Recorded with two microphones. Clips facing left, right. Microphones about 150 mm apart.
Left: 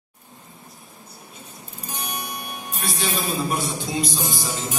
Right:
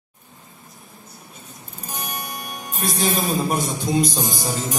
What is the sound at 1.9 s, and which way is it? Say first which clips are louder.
Speech: right 1 dB; 45° right (ahead or behind).